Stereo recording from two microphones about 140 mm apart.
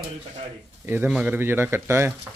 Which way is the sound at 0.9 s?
10° right (ahead or behind).